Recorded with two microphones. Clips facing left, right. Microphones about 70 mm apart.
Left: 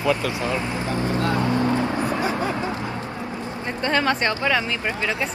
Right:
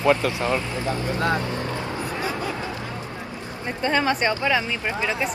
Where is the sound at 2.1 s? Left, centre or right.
Left.